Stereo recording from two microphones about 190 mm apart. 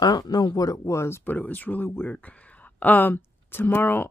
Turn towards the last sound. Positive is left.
turn(degrees=10)  # may be behind; listen again after turning